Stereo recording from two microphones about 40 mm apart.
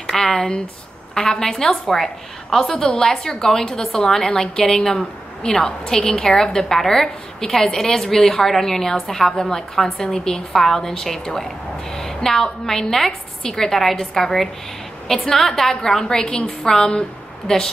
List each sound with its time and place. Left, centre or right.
0.0 s a woman's voice: centre